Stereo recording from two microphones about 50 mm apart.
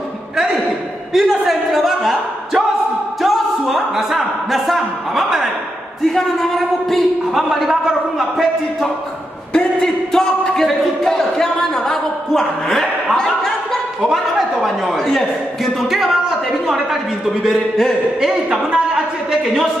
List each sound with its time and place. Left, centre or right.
1.1 s a sound: centre
3.2 s music: centre
6.1 s a man's voice: centre
7.4 s a man's voice: centre
9.5 s speech: centre
14.0 s a man's voice: centre